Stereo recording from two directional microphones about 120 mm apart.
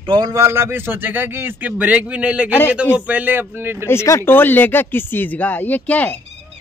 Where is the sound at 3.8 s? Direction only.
25° left (ahead or behind).